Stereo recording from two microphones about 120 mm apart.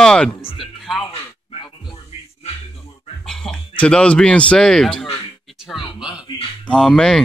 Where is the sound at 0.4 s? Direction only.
50° left (ahead or behind).